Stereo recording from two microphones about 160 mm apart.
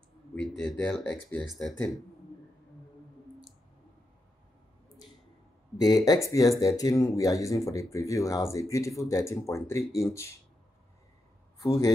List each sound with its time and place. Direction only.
0.4 s speech: 5° left (ahead or behind)
5.8 s speech: 25° left (ahead or behind)
11.6 s speech: 20° left (ahead or behind)